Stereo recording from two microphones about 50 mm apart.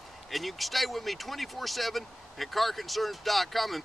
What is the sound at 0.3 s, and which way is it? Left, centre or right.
Speech, centre.